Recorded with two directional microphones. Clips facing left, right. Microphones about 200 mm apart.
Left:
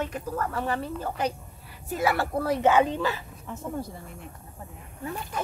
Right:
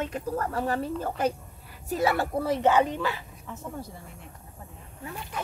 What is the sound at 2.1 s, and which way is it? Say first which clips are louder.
Speech: even; 15° right (ahead or behind).